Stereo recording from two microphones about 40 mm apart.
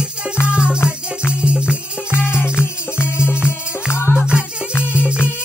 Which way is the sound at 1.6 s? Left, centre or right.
Left.